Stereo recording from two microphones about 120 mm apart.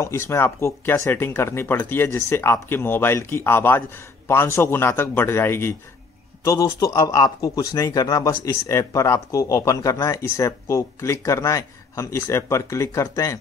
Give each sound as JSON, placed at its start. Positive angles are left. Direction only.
{"t": 0.0, "sound": "speech", "side_deg": 25}